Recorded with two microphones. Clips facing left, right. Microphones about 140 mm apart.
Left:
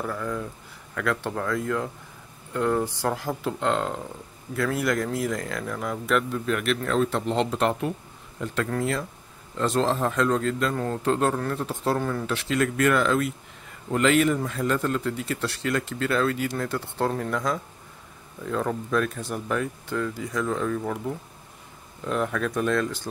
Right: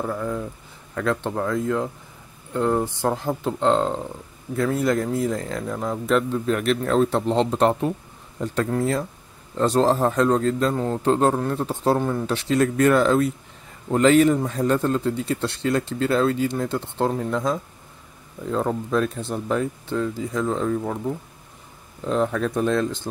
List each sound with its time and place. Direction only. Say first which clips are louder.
0.0 s speech: right 3 dB; 25° right (ahead or behind)
9.6 s speech: right 5 dB; 35° right (ahead or behind)
12.0 s speech: right 4 dB; 20° right (ahead or behind)
12.3 s speech: right 4 dB; 30° right (ahead or behind)
22.0 s speech: right 4 dB; 30° right (ahead or behind)